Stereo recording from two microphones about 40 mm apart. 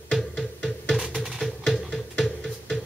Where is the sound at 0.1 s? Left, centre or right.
Centre.